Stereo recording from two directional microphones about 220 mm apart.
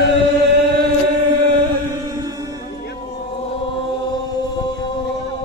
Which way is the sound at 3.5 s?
25° left (ahead or behind).